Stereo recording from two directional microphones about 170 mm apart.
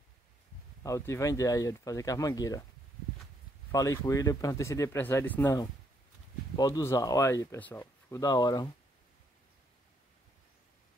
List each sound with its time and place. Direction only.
0.8 s speech: 20° left (ahead or behind)
3.7 s speech: 20° left (ahead or behind)
6.5 s speech: 20° left (ahead or behind)